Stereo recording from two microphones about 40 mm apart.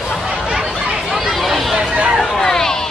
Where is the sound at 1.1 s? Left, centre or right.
Centre.